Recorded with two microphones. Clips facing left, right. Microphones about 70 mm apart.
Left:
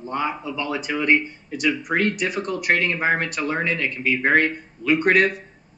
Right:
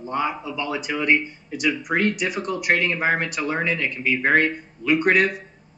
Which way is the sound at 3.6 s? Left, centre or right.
Centre.